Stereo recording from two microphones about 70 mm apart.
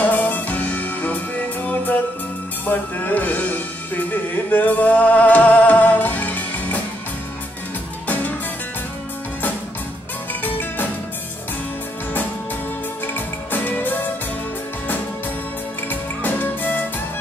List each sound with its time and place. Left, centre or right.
0.0 s music: left
8.1 s music: left
10.4 s music: left
13.0 s music: left
15.9 s music: left